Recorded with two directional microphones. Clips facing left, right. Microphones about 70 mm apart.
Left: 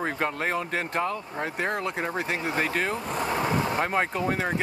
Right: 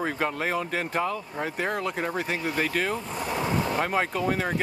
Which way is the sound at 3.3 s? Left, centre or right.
Left.